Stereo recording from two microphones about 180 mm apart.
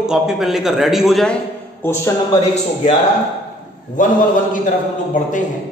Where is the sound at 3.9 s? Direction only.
45° left (ahead or behind).